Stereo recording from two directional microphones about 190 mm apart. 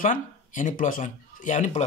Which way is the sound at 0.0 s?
45° left (ahead or behind).